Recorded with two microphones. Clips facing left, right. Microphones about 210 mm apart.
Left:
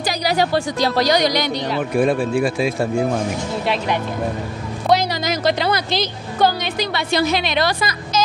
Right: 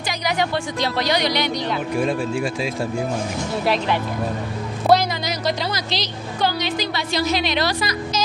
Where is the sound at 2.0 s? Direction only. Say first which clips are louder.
Left 4 dB; 55° left (ahead or behind).